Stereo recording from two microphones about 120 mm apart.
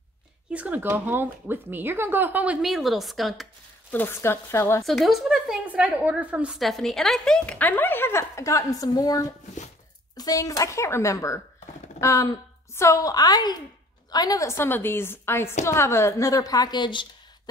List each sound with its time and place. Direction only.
0.5 s speech: 15° right (ahead or behind)
2.6 s speech: centre (ahead or behind)
3.9 s a woman's voice: 15° left (ahead or behind)
4.8 s speech: centre (ahead or behind)
6.6 s a woman's voice: centre (ahead or behind); by 17.1 s 40° left (ahead or behind)